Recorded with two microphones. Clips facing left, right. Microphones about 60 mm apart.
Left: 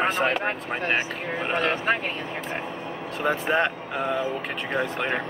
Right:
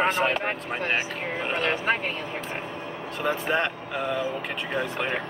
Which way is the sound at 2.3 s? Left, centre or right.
Centre.